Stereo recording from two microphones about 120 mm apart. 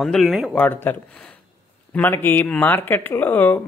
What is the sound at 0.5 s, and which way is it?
Speech, 15° left (ahead or behind).